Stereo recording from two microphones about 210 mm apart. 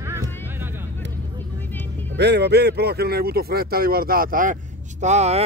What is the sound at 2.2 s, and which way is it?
Speech, 50° right (ahead or behind).